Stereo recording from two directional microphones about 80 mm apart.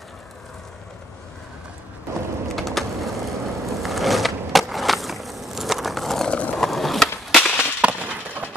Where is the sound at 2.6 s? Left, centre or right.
Centre.